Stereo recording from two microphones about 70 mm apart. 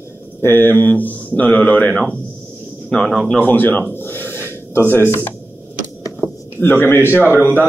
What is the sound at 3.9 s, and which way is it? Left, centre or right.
Snort, left.